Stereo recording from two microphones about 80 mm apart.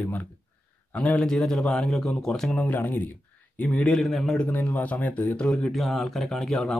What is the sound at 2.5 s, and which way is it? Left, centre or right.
Speech, left.